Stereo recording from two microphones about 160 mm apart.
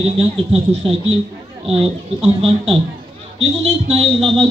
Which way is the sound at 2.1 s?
40° right (ahead or behind).